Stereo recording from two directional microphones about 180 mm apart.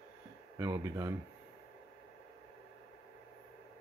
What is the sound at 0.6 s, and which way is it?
Speech, 15° right (ahead or behind).